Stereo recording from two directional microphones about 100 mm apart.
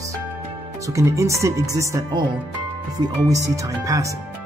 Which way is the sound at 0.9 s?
35° right (ahead or behind).